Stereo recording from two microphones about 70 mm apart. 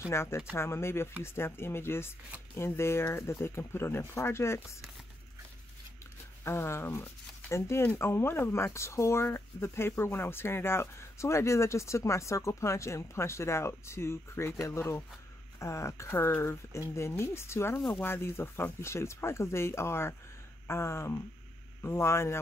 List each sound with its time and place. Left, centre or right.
0.1 s speech: left
6.4 s speech: left
15.6 s speech: left
16.1 s speech: left